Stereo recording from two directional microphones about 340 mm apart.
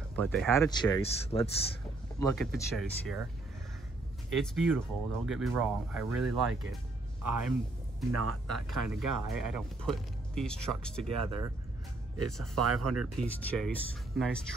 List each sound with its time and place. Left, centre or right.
0.1 s speech: centre
2.1 s speech: centre
4.3 s speech: centre
7.2 s a man's voice: right
8.1 s speech: right
9.6 s speech: centre
11.1 s speech: right
12.5 s speech: right
13.0 s speech: centre